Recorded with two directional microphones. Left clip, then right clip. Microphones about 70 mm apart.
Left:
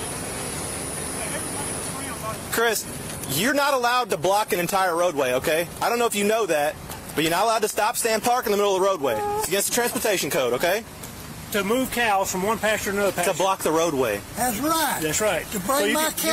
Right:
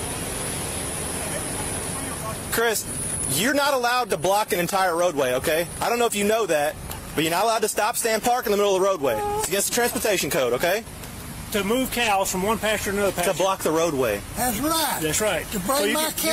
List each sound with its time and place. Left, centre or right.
2.5 s speech: centre
3.3 s speech: centre
10.2 s speech: centre
12.0 s speech: centre
13.4 s speech: centre
14.1 s speech: centre